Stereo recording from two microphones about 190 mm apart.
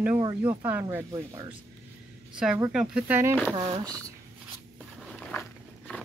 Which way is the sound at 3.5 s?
20° right (ahead or behind).